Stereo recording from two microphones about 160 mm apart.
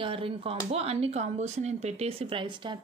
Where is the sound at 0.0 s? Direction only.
35° right (ahead or behind).